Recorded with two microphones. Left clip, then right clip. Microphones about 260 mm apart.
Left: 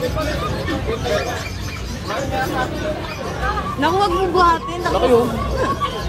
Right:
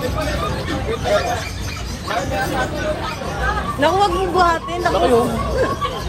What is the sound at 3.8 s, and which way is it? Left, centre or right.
Speech, centre.